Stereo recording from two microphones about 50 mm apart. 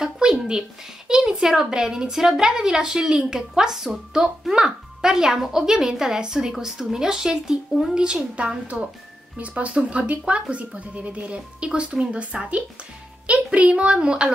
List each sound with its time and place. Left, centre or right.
0.0 s speech: centre